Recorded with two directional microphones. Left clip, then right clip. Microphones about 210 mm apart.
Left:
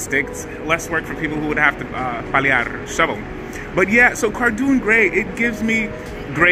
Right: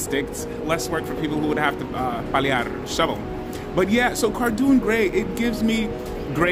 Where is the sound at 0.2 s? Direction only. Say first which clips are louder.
Left 3 dB; 5° right (ahead or behind).